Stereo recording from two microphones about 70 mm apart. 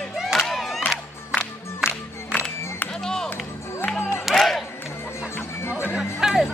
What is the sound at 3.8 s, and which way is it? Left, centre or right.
Music, centre.